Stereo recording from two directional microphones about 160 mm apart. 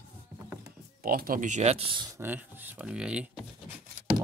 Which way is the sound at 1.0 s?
70° right (ahead or behind).